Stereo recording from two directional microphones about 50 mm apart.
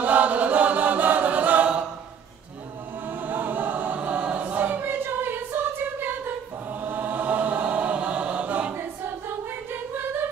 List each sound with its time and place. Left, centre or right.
0.0 s choir: right
3.1 s choir: right
4.8 s music: right
6.8 s choir: right